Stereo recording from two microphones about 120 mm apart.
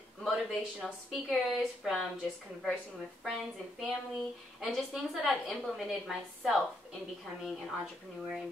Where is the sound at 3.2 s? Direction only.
Centre (ahead or behind).